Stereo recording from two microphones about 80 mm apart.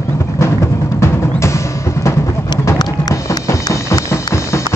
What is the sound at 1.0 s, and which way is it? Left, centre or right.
Music, left.